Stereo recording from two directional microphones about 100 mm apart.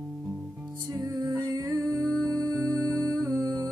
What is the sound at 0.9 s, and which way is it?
Music, 35° right (ahead or behind).